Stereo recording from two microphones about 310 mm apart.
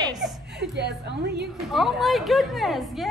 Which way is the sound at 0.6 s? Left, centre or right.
Right.